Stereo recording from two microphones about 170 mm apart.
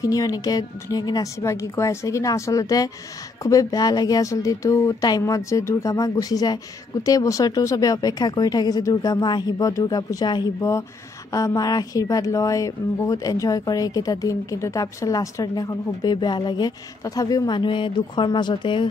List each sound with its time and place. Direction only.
0.0 s speech: 20° left (ahead or behind)